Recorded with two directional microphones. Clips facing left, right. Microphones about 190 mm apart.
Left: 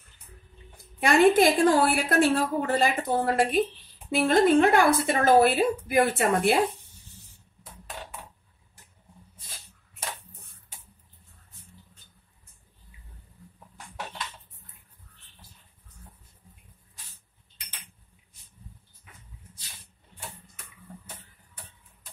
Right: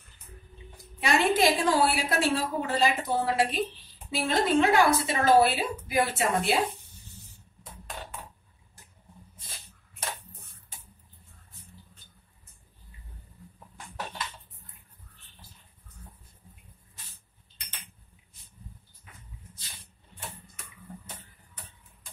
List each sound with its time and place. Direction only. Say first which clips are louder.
1.0 s a woman's voice: left 5 dB; 50° left (ahead or behind)